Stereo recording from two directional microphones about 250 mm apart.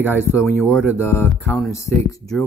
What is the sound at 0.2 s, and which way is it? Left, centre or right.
Speech, centre.